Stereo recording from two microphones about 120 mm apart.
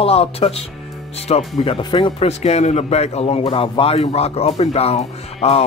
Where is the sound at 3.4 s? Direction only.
45° left (ahead or behind).